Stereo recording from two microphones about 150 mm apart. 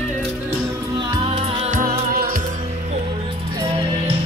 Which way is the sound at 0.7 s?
25° right (ahead or behind).